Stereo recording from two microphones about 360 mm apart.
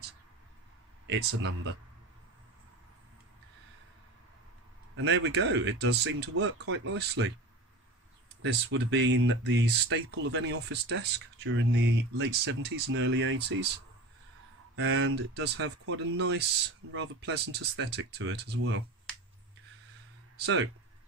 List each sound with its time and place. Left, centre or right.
1.0 s speech: right
4.9 s speech: right
8.4 s speech: right
14.8 s speech: right
20.3 s speech: right